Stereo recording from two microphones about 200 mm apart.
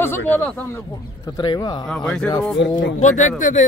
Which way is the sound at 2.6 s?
65° left (ahead or behind).